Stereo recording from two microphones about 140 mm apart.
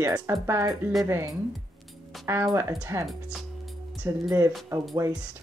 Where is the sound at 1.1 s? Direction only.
20° right (ahead or behind).